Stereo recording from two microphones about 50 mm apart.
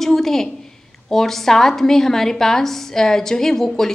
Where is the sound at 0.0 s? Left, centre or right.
Centre.